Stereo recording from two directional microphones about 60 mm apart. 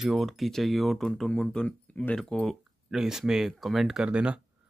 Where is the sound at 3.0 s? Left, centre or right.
Centre.